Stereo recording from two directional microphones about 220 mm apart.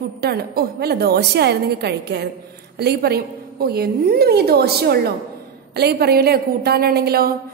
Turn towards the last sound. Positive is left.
turn(degrees=-45)  # may be behind; listen again after turning